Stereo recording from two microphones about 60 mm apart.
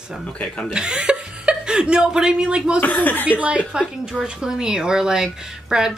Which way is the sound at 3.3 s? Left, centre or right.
Right.